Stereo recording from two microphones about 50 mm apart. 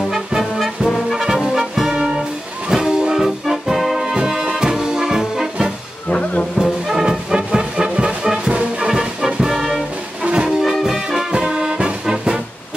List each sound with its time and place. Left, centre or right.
0.4 s brass instrument: centre
1.2 s music: centre
6.0 s music: left
6.6 s music: centre
10.2 s music: centre
10.7 s music: centre